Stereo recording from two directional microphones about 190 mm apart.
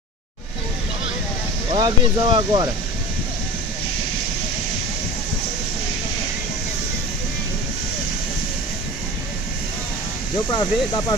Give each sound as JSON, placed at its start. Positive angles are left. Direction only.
{"t": 1.7, "sound": "speech", "side_deg": -20}
{"t": 10.5, "sound": "speech", "side_deg": 20}